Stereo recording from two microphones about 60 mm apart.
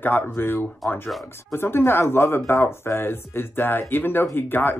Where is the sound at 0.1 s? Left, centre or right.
Left.